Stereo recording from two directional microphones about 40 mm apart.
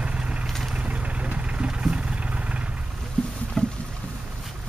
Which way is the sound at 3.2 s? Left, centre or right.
Centre.